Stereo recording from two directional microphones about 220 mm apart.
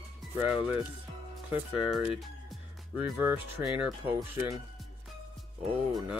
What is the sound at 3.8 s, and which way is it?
Speech, 10° right (ahead or behind).